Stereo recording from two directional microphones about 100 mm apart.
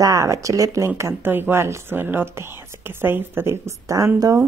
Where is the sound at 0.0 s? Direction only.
35° right (ahead or behind).